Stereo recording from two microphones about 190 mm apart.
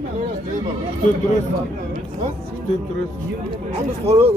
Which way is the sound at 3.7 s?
35° right (ahead or behind).